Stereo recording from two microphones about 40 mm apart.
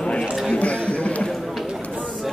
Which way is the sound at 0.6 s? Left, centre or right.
Left.